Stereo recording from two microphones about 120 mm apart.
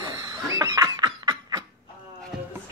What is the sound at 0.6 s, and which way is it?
Snicker, 30° right (ahead or behind).